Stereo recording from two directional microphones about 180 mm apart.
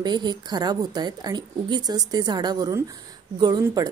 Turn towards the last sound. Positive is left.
turn(degrees=-20)  # may be behind; listen again after turning